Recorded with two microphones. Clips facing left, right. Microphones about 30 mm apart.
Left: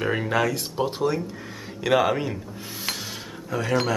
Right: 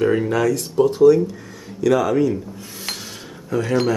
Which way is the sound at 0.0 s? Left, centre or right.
Centre.